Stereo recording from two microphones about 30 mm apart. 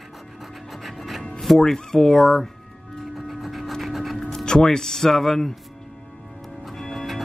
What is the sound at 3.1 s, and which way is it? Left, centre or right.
Music, centre.